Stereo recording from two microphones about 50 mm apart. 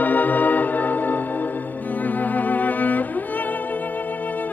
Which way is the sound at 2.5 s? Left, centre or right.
Left.